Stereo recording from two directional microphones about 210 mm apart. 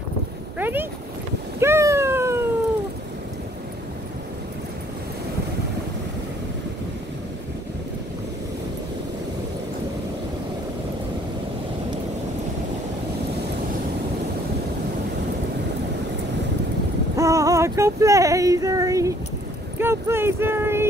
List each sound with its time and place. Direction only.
0.6 s speech: 10° right (ahead or behind)
1.6 s cat: 15° right (ahead or behind)
17.2 s a sound: 15° right (ahead or behind)
19.8 s speech: 10° right (ahead or behind)